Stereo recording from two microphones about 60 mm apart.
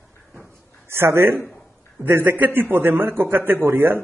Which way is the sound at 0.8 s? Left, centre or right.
Right.